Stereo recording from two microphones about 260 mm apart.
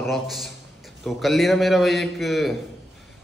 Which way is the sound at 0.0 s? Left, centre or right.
Centre.